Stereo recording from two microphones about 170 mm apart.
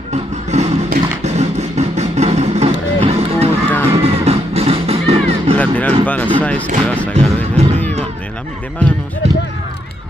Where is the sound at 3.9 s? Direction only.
35° right (ahead or behind).